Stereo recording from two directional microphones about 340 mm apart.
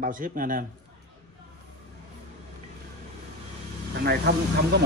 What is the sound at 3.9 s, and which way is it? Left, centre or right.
Speech, right.